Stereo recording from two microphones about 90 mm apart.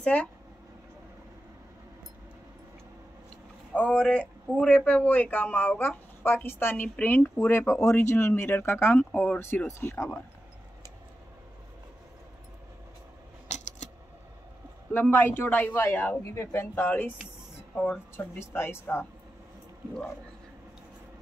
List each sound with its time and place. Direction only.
0.0 s speech: 15° left (ahead or behind)
3.7 s a man's voice: 15° left (ahead or behind); by 10.2 s 30° left (ahead or behind)
14.9 s a man's voice: 20° left (ahead or behind)